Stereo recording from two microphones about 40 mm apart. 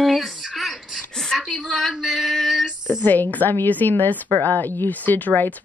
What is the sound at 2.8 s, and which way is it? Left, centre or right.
A woman's voice, left.